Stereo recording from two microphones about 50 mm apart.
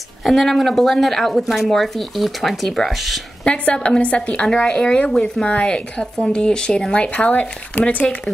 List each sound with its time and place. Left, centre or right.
0.2 s speech: centre
3.4 s a woman's voice: left